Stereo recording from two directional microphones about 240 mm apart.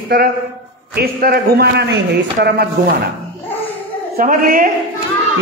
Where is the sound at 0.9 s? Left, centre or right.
Right.